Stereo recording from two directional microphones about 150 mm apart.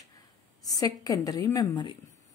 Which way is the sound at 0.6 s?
25° left (ahead or behind).